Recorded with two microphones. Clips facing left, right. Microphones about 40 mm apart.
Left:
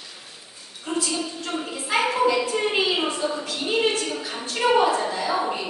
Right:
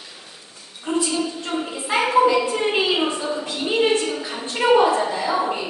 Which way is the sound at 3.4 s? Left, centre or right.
Right.